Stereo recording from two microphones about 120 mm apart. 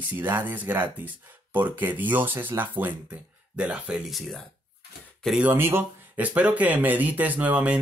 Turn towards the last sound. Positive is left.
turn(degrees=-10)  # may be behind; listen again after turning